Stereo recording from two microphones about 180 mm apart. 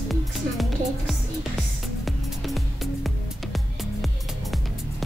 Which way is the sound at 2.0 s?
Centre (ahead or behind).